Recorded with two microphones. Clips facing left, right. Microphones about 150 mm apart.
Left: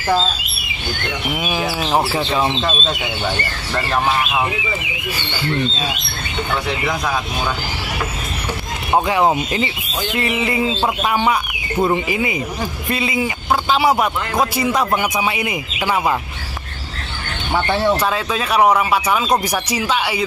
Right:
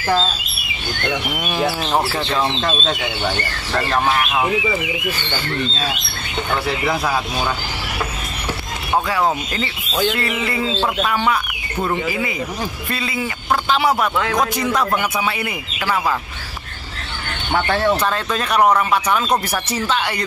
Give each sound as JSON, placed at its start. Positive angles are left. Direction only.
{"t": 1.3, "sound": "speech", "side_deg": 5}
{"t": 8.9, "sound": "speech", "side_deg": 20}
{"t": 17.6, "sound": "speech", "side_deg": 15}